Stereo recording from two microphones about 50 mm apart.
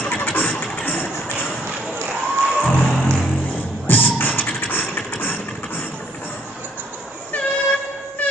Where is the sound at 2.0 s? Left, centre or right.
Right.